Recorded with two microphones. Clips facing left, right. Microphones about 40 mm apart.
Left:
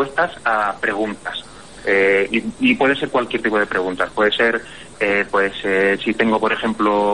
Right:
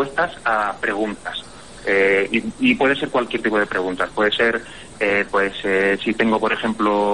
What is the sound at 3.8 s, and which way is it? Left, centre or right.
Speech, left.